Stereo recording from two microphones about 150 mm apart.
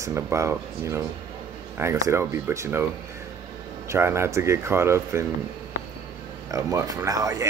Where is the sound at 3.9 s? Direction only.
15° right (ahead or behind).